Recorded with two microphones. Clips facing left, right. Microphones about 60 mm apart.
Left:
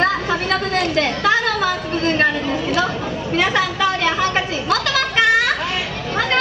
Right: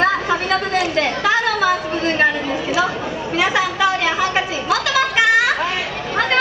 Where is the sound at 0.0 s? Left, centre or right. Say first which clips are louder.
Right 1 dB; centre.